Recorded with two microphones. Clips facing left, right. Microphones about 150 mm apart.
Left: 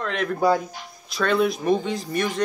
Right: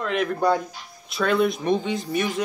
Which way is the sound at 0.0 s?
5° right (ahead or behind).